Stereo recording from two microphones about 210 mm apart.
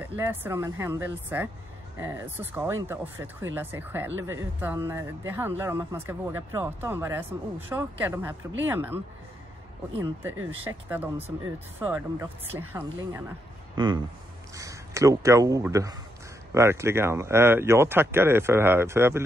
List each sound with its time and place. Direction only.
0.0 s speech: 10° right (ahead or behind)
10.3 s speech: 75° right (ahead or behind)
10.9 s speech: 10° right (ahead or behind)
13.7 s speech: 20° right (ahead or behind)